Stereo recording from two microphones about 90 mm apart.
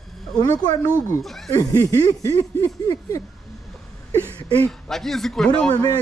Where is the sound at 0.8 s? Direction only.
25° right (ahead or behind).